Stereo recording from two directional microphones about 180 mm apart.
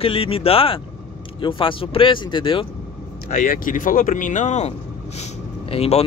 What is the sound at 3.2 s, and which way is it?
Speech, 50° left (ahead or behind).